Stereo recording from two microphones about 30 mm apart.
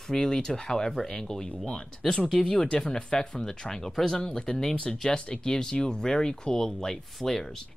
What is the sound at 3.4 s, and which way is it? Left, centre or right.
Speech, centre.